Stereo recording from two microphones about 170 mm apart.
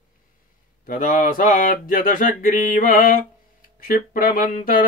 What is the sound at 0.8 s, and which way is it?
Speech, 55° left (ahead or behind).